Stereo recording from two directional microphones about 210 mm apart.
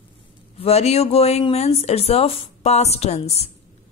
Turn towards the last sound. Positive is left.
turn(degrees=30)  # may be behind; listen again after turning